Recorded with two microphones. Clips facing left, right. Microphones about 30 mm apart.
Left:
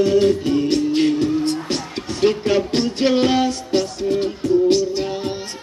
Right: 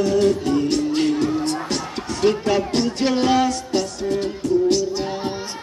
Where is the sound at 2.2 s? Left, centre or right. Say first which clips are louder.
Left 1 dB; left.